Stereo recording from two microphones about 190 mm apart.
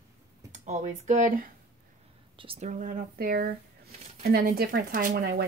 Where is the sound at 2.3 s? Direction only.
30° right (ahead or behind).